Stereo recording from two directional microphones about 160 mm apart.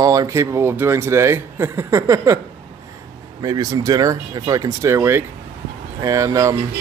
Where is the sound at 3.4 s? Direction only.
20° right (ahead or behind).